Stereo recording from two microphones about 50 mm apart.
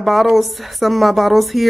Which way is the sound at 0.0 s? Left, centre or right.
Centre.